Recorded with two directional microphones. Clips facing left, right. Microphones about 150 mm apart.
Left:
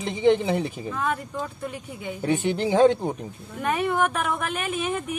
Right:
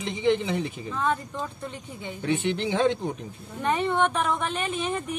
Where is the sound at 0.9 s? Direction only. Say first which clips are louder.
Right 2 dB; 10° left (ahead or behind).